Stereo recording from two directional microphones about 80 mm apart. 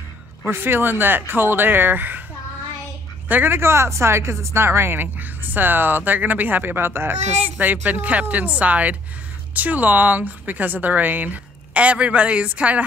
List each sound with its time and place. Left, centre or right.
0.5 s speech: right
3.3 s speech: right